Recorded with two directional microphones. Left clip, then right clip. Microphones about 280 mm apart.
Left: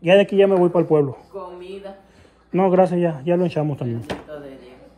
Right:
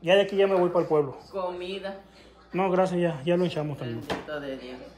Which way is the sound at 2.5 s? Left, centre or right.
Centre.